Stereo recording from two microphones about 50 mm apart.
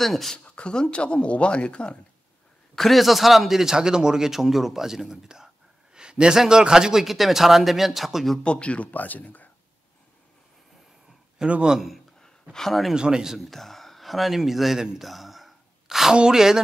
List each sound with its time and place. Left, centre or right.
0.0 s speech: centre
0.6 s speech: centre
2.7 s a man's voice: centre
8.5 s speech: left
11.6 s a man's voice: centre
12.5 s speech: centre
12.9 s a man's voice: centre
13.4 s speech: centre
15.0 s a sound: centre
16.2 s a man's voice: centre